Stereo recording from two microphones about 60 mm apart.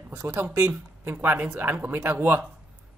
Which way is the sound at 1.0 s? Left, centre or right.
Right.